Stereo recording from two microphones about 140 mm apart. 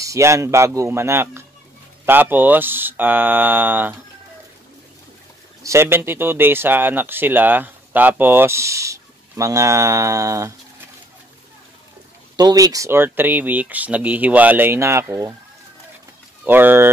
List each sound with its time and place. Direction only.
0.0 s a man's voice: 20° right (ahead or behind)
5.6 s speech: 20° right (ahead or behind)
12.4 s speech: 30° right (ahead or behind)
16.4 s speech: 15° right (ahead or behind)